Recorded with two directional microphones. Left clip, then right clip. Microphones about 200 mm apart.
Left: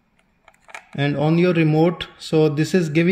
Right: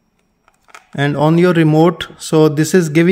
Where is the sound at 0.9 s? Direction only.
45° right (ahead or behind).